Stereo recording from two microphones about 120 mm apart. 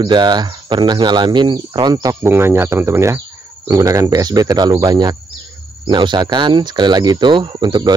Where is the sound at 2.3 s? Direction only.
20° right (ahead or behind); by 7.9 s 40° right (ahead or behind).